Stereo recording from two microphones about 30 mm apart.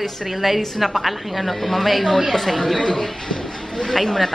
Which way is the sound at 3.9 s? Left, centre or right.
Centre.